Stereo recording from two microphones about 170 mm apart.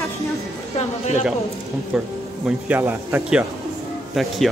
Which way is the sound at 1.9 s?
5° right (ahead or behind).